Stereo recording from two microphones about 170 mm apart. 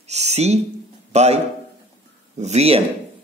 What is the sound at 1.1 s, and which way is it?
Speech, 40° right (ahead or behind).